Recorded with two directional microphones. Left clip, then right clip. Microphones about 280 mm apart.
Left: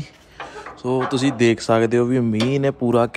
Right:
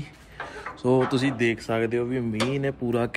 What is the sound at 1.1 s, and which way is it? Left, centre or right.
A man's voice, centre.